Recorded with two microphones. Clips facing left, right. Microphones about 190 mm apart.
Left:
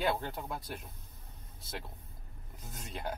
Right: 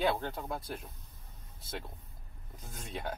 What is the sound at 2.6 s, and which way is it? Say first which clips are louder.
Speech: right 2 dB; centre (ahead or behind).